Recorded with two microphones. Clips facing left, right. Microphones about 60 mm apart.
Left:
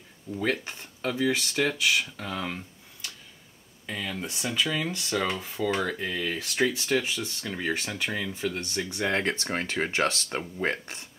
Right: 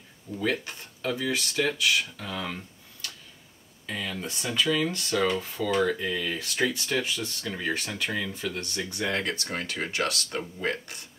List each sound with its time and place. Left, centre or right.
0.4 s speech: left
2.4 s a sound: centre
3.9 s speech: centre; by 11.1 s left